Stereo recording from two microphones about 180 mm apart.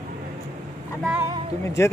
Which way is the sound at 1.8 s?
15° left (ahead or behind).